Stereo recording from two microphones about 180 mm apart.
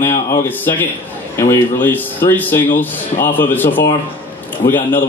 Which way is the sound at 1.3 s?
10° left (ahead or behind).